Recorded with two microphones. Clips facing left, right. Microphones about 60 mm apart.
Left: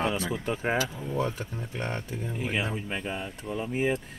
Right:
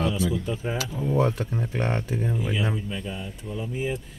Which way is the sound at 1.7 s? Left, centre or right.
Right.